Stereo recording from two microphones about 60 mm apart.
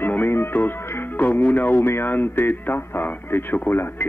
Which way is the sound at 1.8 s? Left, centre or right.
Left.